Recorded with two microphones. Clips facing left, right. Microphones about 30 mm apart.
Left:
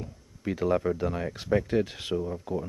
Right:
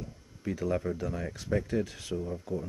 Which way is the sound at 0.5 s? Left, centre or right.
Left.